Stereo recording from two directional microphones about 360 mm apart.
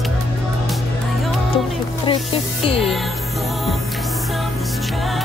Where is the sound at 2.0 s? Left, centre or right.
Centre.